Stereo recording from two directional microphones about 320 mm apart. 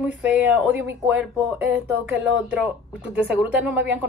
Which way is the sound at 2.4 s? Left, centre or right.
Centre.